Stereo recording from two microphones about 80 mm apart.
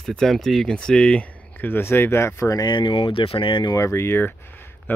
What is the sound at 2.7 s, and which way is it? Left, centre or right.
Speech, left.